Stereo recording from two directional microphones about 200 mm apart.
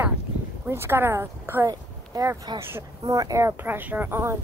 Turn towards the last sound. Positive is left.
turn(degrees=-10)  # may be behind; listen again after turning